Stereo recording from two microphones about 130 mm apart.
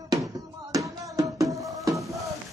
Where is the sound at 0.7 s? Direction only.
25° right (ahead or behind).